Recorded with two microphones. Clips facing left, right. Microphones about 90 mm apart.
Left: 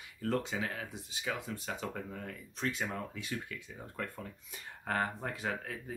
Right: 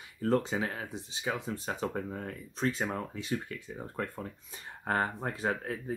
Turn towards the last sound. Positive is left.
turn(degrees=-35)  # may be behind; listen again after turning